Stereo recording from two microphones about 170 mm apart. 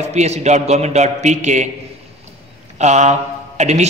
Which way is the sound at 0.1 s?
40° right (ahead or behind).